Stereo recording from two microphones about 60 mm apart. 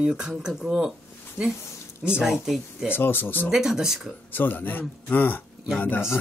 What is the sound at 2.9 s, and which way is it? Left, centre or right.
Speech, left.